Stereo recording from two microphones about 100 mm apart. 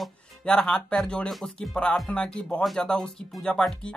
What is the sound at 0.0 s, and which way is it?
Speech, 5° left (ahead or behind).